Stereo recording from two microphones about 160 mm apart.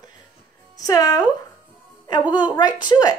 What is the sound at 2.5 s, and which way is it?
Speech, 30° left (ahead or behind).